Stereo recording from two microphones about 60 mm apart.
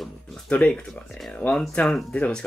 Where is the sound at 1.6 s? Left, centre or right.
Centre.